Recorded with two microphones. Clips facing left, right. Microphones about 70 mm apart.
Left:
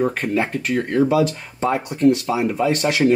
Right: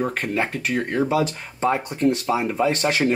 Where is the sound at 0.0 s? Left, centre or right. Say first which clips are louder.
Left 3 dB; centre.